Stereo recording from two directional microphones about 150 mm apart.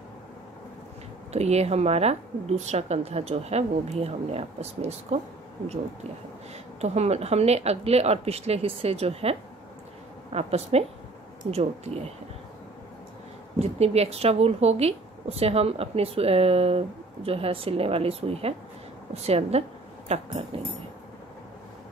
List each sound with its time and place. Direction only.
1.3 s speech: 45° right (ahead or behind)
6.8 s speech: 45° right (ahead or behind)
13.6 s a woman's voice: 45° right (ahead or behind)